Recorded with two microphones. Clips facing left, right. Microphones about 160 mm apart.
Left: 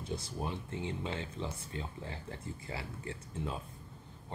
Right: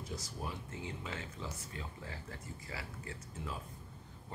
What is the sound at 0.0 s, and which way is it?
Speech, 25° left (ahead or behind).